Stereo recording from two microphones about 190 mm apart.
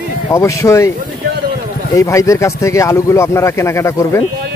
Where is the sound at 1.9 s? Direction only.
15° left (ahead or behind).